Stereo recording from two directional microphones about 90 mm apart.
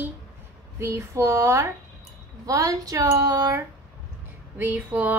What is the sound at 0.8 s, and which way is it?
Speech, 30° right (ahead or behind).